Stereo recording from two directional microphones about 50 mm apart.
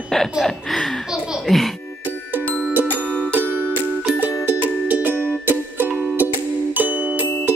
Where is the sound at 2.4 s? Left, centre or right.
Left.